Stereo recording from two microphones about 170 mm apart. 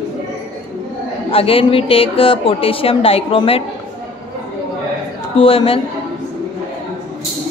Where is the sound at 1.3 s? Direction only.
35° left (ahead or behind).